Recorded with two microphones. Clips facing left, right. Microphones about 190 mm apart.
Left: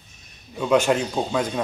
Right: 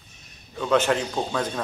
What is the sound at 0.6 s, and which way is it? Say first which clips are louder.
Speech: left 2 dB; 10° left (ahead or behind).